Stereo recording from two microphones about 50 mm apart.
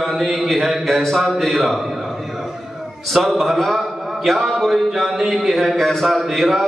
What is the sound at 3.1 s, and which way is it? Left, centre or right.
Speech, centre.